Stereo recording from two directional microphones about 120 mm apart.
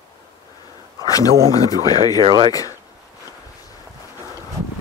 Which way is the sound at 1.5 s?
30° left (ahead or behind).